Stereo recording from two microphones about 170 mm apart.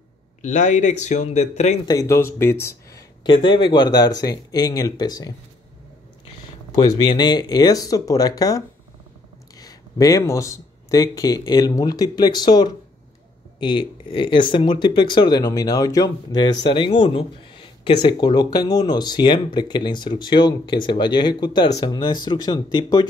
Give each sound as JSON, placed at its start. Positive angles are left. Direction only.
{"t": 0.4, "sound": "speech", "side_deg": 45}
{"t": 1.9, "sound": "speech", "side_deg": 20}
{"t": 6.7, "sound": "speech", "side_deg": 25}